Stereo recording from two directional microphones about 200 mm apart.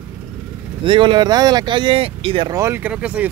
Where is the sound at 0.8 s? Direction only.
25° right (ahead or behind).